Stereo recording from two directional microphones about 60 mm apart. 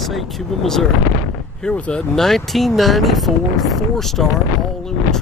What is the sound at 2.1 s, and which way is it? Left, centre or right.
Speech, centre.